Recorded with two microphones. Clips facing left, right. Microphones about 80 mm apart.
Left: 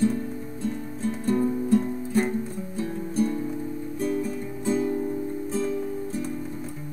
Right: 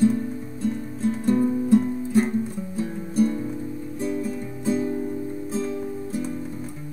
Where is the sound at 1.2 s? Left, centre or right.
Centre.